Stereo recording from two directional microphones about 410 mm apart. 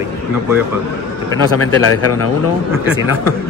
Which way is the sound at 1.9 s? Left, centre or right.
Left.